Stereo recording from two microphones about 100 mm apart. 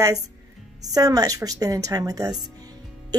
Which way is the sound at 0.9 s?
40° right (ahead or behind).